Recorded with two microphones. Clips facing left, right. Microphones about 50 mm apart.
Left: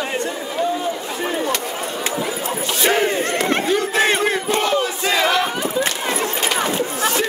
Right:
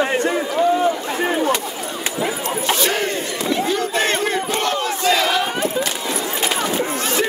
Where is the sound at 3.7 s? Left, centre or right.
Centre.